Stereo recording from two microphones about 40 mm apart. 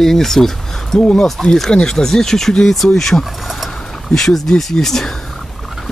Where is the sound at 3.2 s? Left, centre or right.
Centre.